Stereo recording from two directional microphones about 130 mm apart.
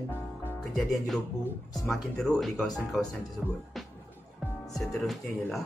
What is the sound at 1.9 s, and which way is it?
Speech, 5° left (ahead or behind).